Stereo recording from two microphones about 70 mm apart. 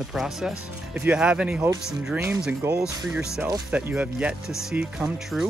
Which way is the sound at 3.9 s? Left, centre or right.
Centre.